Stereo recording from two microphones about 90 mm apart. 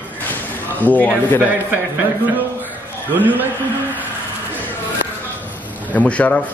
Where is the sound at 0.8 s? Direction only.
20° left (ahead or behind).